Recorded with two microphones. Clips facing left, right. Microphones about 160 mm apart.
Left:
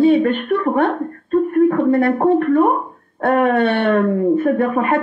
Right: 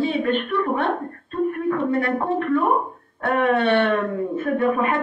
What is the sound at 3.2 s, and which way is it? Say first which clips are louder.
Speech: left 4 dB; 50° left (ahead or behind).